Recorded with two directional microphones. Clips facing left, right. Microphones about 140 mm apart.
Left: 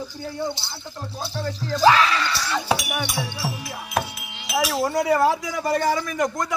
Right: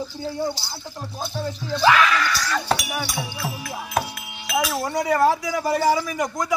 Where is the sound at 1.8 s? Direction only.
30° left (ahead or behind).